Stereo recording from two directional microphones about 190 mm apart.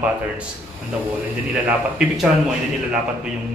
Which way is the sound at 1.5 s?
5° right (ahead or behind).